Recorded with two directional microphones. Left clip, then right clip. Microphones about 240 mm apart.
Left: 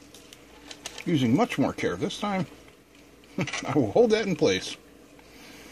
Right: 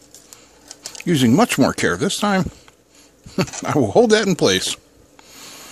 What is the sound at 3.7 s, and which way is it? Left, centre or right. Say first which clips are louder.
Speech: right 7 dB; right.